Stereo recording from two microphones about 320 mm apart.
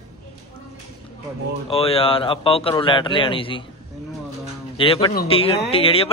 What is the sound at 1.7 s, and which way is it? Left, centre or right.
Speech, centre.